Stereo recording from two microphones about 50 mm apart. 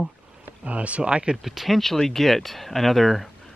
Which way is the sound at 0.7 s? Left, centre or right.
Right.